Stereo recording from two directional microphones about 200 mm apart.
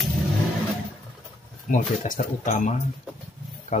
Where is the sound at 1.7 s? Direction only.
40° left (ahead or behind).